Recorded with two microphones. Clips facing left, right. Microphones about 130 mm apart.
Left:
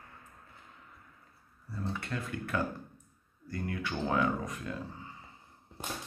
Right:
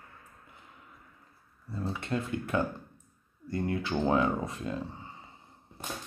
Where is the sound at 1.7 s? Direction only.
20° right (ahead or behind).